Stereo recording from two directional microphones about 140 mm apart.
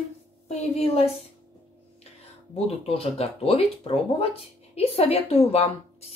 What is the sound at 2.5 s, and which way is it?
Speech, 45° left (ahead or behind).